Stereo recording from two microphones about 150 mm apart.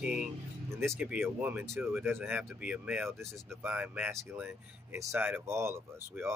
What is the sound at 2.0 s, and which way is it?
Speech, 10° right (ahead or behind).